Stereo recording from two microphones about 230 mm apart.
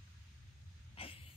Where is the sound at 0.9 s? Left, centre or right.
Left.